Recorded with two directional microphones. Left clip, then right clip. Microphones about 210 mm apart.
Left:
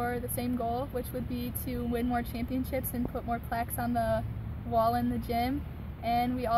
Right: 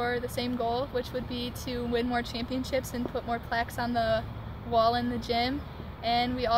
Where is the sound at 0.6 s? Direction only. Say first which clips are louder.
Right 3 dB; 10° right (ahead or behind).